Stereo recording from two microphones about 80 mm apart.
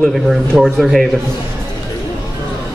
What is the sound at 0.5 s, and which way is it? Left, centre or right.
Speech, centre.